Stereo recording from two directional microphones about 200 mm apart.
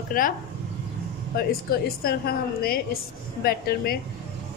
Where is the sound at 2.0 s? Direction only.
50° left (ahead or behind).